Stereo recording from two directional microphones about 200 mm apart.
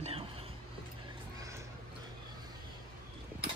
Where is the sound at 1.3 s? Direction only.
15° right (ahead or behind).